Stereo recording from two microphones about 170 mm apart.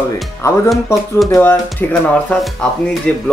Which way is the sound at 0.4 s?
15° left (ahead or behind).